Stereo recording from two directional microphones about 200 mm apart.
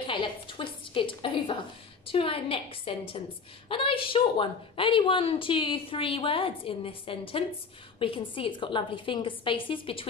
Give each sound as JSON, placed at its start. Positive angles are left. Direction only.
{"t": 0.0, "sound": "a woman's voice", "side_deg": 25}